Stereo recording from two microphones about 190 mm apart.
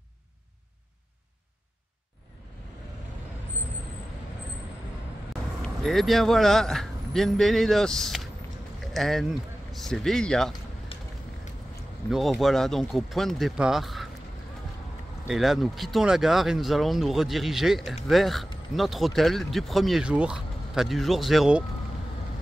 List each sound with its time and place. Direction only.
5.6 s speech: centre (ahead or behind)
10.9 s a sound: 30° left (ahead or behind)
12.1 s speech: centre (ahead or behind)
15.2 s speech: centre (ahead or behind)